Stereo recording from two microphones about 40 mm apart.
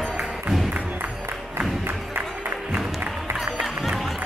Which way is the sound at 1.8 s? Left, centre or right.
Right.